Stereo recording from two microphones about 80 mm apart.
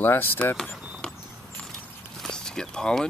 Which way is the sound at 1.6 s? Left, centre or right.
Centre.